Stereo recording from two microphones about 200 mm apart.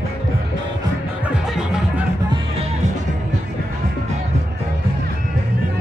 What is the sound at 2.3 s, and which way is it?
Music, 30° right (ahead or behind).